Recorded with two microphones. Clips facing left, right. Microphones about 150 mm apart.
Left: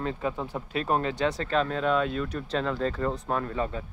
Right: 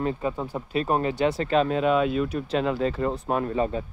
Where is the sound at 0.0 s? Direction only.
5° right (ahead or behind).